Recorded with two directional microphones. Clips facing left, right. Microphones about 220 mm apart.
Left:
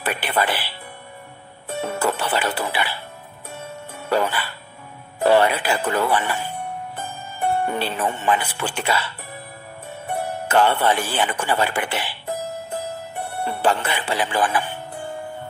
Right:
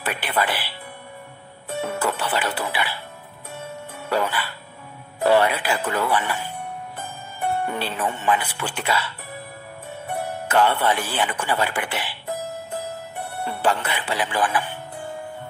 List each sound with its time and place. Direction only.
0.0 s speech: 30° left (ahead or behind)
1.8 s speech: 30° left (ahead or behind)
4.1 s speech: 30° left (ahead or behind)
13.4 s speech: 30° left (ahead or behind)